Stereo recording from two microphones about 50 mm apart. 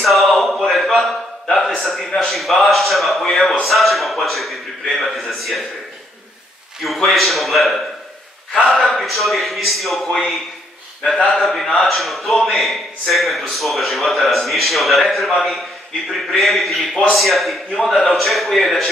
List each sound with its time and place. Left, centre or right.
0.0 s a sound: centre
0.7 s a man's voice: centre
6.8 s a man's voice: centre
11.0 s speech: centre
11.4 s a man's voice: centre